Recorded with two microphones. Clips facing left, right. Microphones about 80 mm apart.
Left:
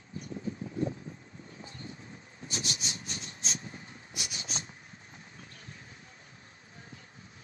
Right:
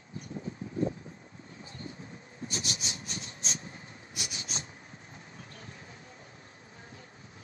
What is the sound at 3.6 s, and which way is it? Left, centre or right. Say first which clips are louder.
Vehicle: left 1 dB; right.